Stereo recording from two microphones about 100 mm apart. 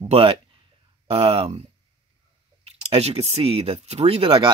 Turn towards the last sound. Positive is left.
turn(degrees=-65)  # may be behind; listen again after turning